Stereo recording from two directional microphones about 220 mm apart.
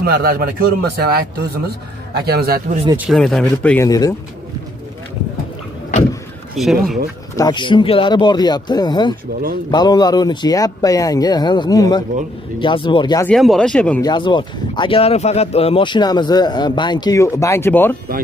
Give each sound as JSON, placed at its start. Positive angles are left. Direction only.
{"t": 0.0, "sound": "a man's voice", "side_deg": -45}
{"t": 2.1, "sound": "a man's voice", "side_deg": -45}
{"t": 3.1, "sound": "speech", "side_deg": 0}
{"t": 6.5, "sound": "speech", "side_deg": 0}
{"t": 7.3, "sound": "speech", "side_deg": 20}
{"t": 13.3, "sound": "speech", "side_deg": 0}
{"t": 14.0, "sound": "speech", "side_deg": 20}